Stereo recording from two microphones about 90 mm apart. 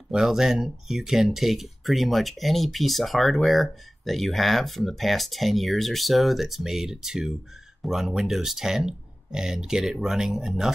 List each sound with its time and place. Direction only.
0.1 s speech: 5° right (ahead or behind)